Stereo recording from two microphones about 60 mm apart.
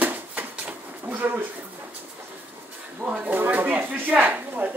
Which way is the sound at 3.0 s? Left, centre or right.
Right.